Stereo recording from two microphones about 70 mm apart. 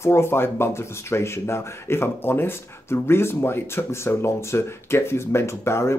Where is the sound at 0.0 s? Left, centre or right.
Left.